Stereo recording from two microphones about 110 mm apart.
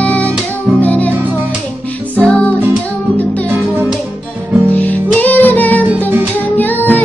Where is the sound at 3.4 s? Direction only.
20° right (ahead or behind).